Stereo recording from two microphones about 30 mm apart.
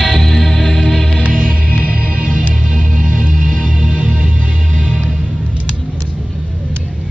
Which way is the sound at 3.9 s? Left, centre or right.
Right.